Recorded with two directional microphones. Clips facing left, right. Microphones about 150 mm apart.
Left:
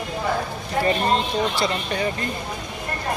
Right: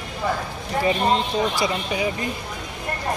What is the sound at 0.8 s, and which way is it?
Speech, 15° right (ahead or behind).